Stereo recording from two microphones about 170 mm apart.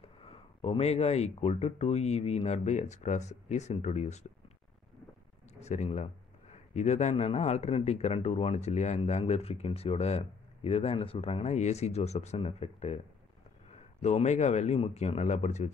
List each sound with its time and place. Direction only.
0.2 s speech: 35° left (ahead or behind)
5.5 s speech: 40° left (ahead or behind)
14.0 s speech: 45° left (ahead or behind)